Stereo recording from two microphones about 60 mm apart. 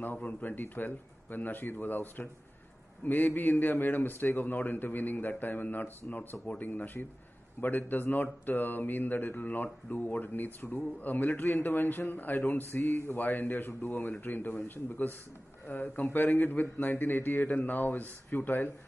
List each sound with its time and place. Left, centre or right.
0.0 s a man's voice: left